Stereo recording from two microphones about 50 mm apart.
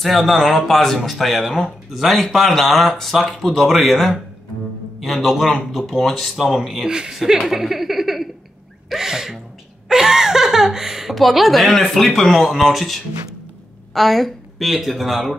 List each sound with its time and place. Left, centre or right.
0.0 s a woman's voice: centre
8.8 s sneeze: centre
9.8 s speech: centre